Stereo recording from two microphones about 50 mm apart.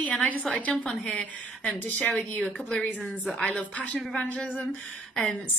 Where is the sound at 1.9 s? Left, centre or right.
Left.